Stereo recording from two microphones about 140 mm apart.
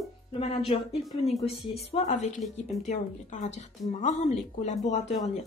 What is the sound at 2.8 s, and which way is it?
Speech, 60° left (ahead or behind).